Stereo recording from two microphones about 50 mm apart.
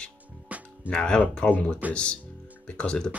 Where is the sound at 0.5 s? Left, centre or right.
Right.